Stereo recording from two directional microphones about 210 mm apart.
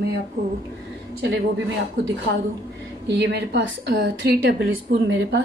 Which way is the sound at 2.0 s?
60° right (ahead or behind).